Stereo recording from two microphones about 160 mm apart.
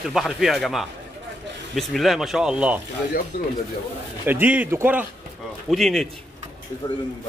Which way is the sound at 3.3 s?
70° left (ahead or behind).